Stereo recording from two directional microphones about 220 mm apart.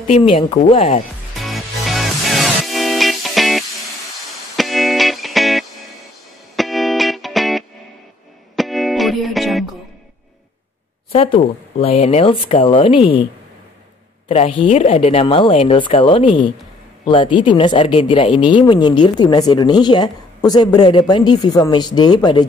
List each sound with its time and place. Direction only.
0.1 s speech: 25° left (ahead or behind)
1.4 s music: centre (ahead or behind)
11.1 s speech: 25° left (ahead or behind)
14.3 s speech: 25° left (ahead or behind)